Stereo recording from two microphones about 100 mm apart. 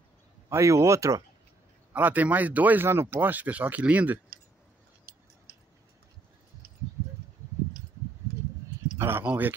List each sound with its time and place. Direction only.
0.5 s speech: 30° right (ahead or behind)
2.0 s speech: 15° right (ahead or behind)
8.9 s speech: 25° right (ahead or behind)